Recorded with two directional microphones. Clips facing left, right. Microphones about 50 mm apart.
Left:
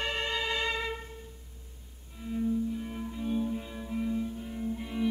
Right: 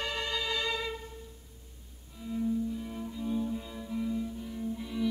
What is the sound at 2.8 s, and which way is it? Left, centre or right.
Music, left.